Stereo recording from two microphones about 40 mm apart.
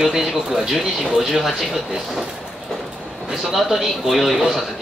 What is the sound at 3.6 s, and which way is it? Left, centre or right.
Speech, centre.